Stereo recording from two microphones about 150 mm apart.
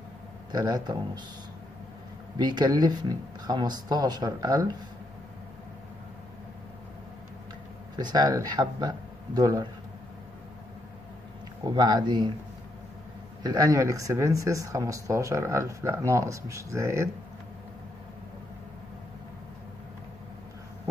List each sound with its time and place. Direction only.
0.5 s speech: 25° right (ahead or behind)
2.3 s speech: 30° right (ahead or behind)
7.9 s speech: 30° right (ahead or behind)
11.6 s speech: 25° right (ahead or behind)
13.4 s speech: 25° right (ahead or behind)